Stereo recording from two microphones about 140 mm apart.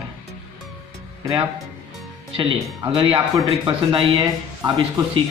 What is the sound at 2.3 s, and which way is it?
Speech, 35° right (ahead or behind).